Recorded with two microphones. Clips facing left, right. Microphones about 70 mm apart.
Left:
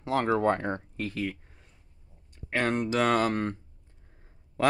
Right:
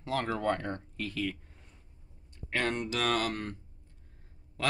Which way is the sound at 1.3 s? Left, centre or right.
Centre.